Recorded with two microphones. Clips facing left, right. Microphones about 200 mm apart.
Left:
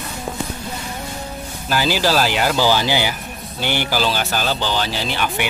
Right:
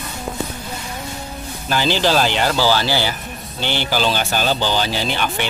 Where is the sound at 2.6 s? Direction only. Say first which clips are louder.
Left 1 dB; 15° left (ahead or behind).